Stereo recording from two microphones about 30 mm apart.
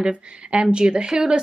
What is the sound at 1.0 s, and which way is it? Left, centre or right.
Speech, right.